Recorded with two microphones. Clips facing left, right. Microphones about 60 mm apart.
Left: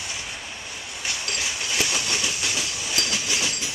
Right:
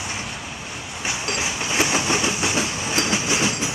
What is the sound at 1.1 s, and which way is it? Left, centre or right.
Train, right.